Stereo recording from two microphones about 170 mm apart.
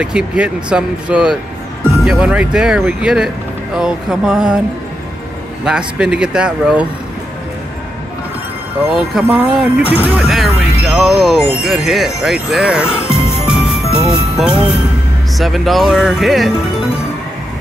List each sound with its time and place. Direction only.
0.0 s speech: 5° right (ahead or behind)
5.7 s speech: 5° right (ahead or behind)
8.9 s speech: 5° right (ahead or behind)
12.9 s music: 35° left (ahead or behind)
13.5 s music: 5° right (ahead or behind)
15.3 s speech: centre (ahead or behind)